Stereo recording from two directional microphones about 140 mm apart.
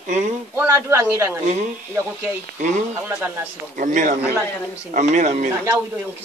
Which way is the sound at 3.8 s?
65° right (ahead or behind).